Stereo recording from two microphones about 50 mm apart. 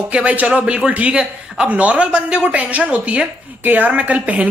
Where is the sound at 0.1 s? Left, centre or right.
Right.